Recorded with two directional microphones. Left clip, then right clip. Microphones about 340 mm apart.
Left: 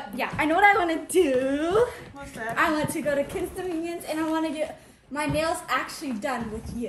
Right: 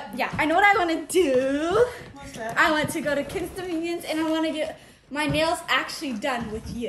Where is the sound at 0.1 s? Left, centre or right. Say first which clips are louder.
Right 2 dB; centre.